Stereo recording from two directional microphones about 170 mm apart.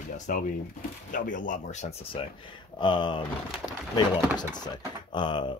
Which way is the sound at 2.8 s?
30° left (ahead or behind).